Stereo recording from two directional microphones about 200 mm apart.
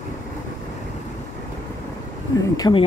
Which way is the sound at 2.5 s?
20° left (ahead or behind).